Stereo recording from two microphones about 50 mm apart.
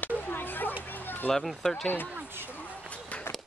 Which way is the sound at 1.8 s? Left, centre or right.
Left.